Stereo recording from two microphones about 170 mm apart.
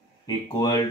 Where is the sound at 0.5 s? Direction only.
20° left (ahead or behind).